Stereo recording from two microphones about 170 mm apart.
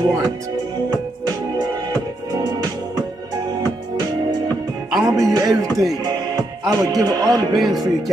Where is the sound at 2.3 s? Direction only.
20° right (ahead or behind).